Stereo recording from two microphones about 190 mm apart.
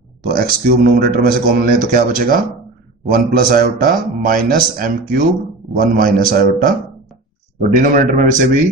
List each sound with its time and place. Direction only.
0.2 s a man's voice: 50° right (ahead or behind)
7.8 s a man's voice: 45° right (ahead or behind)